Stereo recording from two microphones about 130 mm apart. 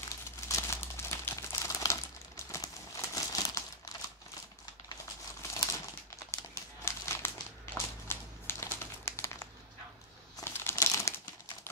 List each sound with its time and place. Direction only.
0.1 s crumpling: 20° left (ahead or behind)
5.5 s crumpling: 25° left (ahead or behind)